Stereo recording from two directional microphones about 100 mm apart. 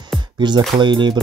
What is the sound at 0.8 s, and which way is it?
Music, 50° right (ahead or behind).